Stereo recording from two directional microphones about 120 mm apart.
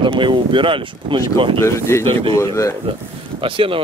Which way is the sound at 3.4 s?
45° right (ahead or behind).